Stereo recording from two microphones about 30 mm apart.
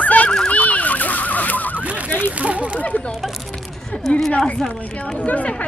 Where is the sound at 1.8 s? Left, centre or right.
Right.